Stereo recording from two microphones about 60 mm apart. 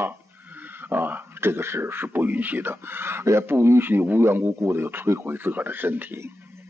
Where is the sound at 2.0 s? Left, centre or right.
Right.